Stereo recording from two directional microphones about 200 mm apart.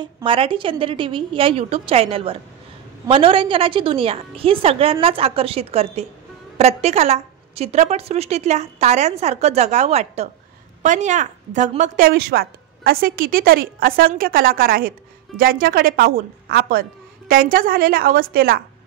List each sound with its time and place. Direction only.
0.0 s a woman's voice: 25° right (ahead or behind)
12.1 s a woman's voice: 50° right (ahead or behind)